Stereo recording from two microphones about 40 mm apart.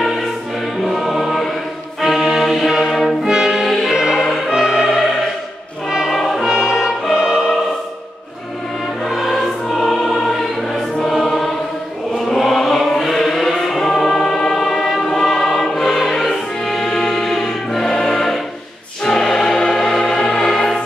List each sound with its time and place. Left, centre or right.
0.0 s music: centre
0.8 s choir: centre
2.0 s music: centre
3.3 s music: centre
3.6 s music: centre
5.9 s music: centre
6.1 s music: centre
6.4 s music: centre
9.0 s music: centre
11.2 s choir: centre
12.2 s chant: centre
12.6 s choir: centre
19.0 s music: centre